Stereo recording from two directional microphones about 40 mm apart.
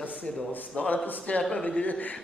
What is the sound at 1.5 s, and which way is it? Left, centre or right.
Speech, left.